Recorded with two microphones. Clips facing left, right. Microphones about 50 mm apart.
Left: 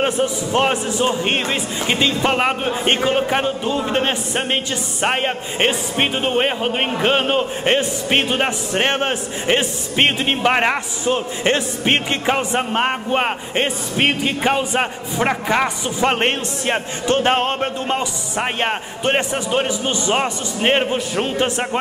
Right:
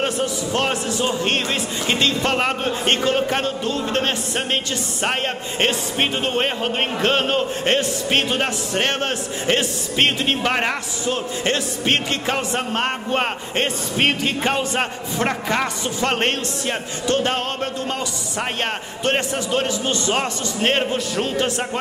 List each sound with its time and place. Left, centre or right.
0.0 s a man's voice: centre